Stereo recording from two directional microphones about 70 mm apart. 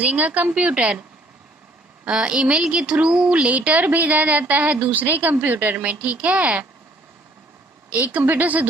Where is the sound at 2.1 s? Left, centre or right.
Centre.